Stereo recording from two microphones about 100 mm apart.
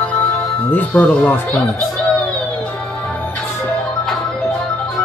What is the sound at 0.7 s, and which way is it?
Speech, 15° left (ahead or behind).